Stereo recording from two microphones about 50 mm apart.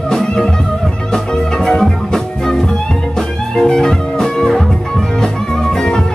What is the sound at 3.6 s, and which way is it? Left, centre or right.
Music, centre.